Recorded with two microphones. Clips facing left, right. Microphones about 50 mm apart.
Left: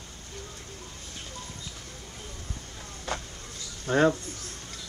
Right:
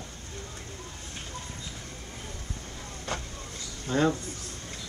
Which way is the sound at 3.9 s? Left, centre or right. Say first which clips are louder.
Left 3 dB; left.